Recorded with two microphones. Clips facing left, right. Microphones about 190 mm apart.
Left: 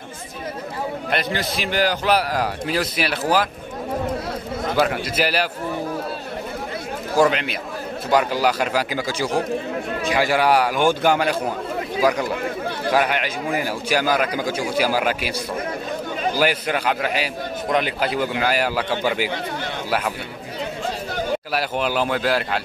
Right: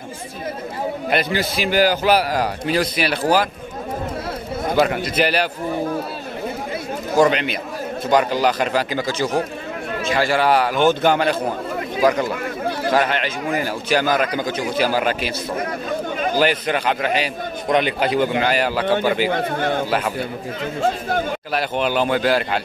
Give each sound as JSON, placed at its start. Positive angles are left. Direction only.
{"t": 1.1, "sound": "a man's voice", "side_deg": 0}
{"t": 4.7, "sound": "a man's voice", "side_deg": 5}
{"t": 7.2, "sound": "a man's voice", "side_deg": 0}
{"t": 16.3, "sound": "a man's voice", "side_deg": 10}
{"t": 19.2, "sound": "a man's voice", "side_deg": -50}
{"t": 21.5, "sound": "a man's voice", "side_deg": 5}